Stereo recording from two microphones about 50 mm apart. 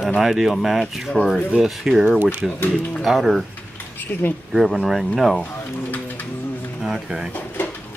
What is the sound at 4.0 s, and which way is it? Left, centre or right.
Speech, left.